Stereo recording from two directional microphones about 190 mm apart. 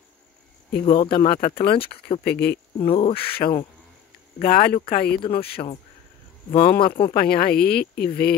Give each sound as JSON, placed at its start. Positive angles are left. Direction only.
{"t": 0.8, "sound": "speech", "side_deg": 25}
{"t": 2.2, "sound": "speech", "side_deg": 60}
{"t": 2.8, "sound": "speech", "side_deg": 30}
{"t": 4.4, "sound": "speech", "side_deg": 50}
{"t": 5.2, "sound": "speech", "side_deg": 30}
{"t": 6.5, "sound": "speech", "side_deg": 30}
{"t": 7.2, "sound": "speech", "side_deg": 50}